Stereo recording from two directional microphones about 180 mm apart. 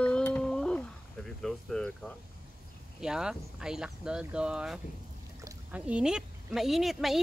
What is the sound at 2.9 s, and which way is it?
Speech, 5° right (ahead or behind).